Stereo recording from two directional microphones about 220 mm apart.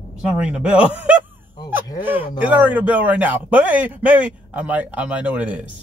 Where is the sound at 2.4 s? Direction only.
5° right (ahead or behind).